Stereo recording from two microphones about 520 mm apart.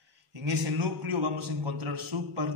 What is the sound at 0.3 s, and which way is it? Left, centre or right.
A man's voice, right.